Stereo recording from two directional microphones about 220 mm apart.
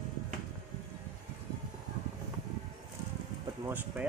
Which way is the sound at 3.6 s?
10° right (ahead or behind).